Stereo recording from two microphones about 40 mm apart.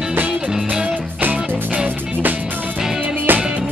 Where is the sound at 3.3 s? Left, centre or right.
Right.